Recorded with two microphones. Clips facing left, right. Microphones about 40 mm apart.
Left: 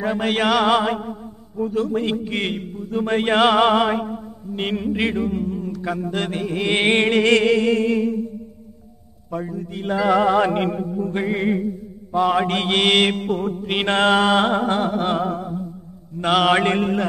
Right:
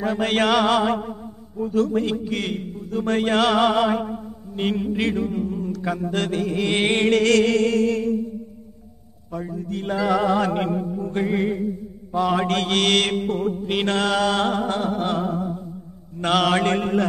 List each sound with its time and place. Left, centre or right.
0.0 s music: centre
2.0 s mantra: left
5.4 s music: centre
6.2 s mantra: centre
9.4 s music: centre
12.1 s mantra: centre
16.2 s music: centre